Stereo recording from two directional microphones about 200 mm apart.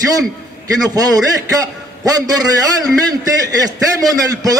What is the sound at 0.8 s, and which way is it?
A man's voice, 20° right (ahead or behind).